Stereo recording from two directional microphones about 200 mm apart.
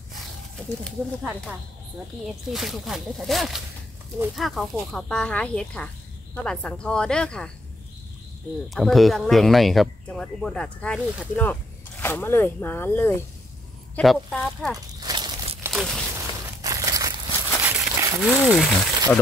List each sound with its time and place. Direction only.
0.1 s speech: centre (ahead or behind)
2.5 s speech: centre (ahead or behind)
8.6 s speech: centre (ahead or behind)
15.0 s a sound: 20° right (ahead or behind)
15.7 s walk: centre (ahead or behind)
16.2 s a sound: 15° right (ahead or behind); by 18.9 s centre (ahead or behind)